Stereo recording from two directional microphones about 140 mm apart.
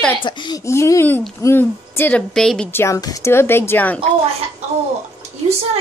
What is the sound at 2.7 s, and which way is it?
Speech, 20° left (ahead or behind).